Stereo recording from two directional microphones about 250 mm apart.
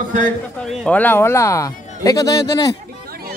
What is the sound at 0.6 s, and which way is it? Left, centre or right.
Speech, centre.